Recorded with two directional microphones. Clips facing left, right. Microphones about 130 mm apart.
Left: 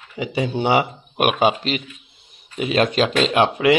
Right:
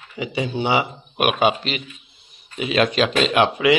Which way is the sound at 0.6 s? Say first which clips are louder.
Left 3 dB; 45° left (ahead or behind).